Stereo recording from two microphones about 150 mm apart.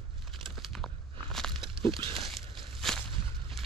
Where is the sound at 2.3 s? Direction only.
Centre (ahead or behind).